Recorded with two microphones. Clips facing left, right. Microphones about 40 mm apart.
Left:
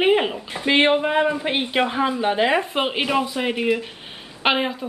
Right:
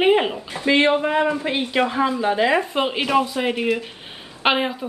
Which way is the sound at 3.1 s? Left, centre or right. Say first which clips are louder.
Right 2 dB; centre.